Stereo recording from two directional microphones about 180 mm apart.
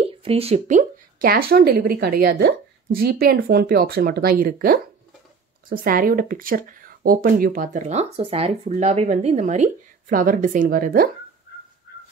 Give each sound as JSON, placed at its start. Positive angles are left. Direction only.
{"t": 0.0, "sound": "speech", "side_deg": -35}